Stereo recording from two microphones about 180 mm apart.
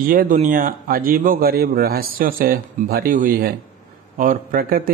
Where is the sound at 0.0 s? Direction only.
50° right (ahead or behind).